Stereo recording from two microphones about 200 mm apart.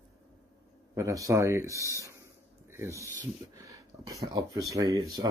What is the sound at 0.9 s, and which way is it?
Speech, 15° right (ahead or behind).